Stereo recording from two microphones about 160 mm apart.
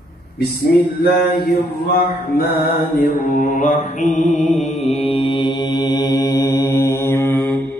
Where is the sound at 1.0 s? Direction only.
70° left (ahead or behind).